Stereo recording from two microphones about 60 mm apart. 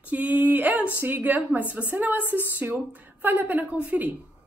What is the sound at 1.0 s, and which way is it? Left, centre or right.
A woman's voice, right.